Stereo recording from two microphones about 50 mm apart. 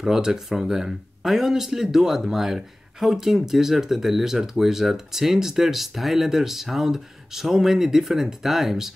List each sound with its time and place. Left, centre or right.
0.0 s speech: centre